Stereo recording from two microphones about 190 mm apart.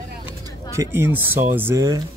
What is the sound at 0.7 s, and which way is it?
Speech, 15° right (ahead or behind).